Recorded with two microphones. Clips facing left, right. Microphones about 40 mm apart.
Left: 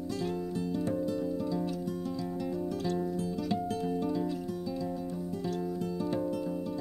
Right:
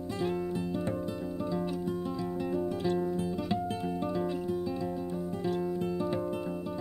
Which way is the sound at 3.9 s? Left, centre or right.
Right.